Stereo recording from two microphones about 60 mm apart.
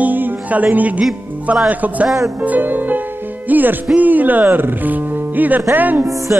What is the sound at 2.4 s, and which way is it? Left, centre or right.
Music, right.